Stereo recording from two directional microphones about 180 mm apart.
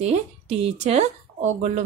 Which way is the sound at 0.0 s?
35° right (ahead or behind).